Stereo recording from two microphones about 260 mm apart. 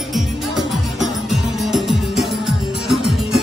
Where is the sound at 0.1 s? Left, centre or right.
Centre.